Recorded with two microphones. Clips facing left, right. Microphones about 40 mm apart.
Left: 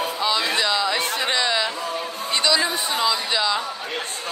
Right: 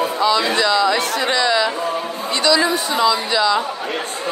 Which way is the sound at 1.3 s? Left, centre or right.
Centre.